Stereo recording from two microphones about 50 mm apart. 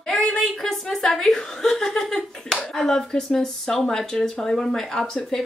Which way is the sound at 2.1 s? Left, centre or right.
Centre.